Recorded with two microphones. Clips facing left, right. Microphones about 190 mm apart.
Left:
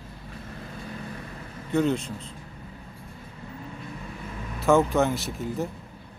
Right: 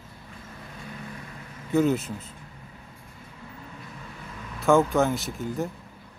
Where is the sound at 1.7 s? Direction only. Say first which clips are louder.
Right 2 dB; 5° right (ahead or behind).